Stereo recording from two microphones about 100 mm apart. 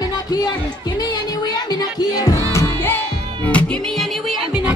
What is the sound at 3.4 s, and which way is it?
Music, 15° left (ahead or behind).